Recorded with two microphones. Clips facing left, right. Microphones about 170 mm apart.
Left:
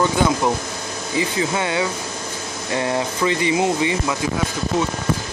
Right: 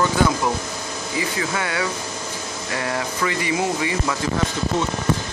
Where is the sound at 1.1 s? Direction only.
25° left (ahead or behind).